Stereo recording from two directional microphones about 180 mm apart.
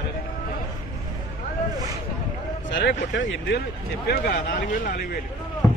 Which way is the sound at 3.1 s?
90° left.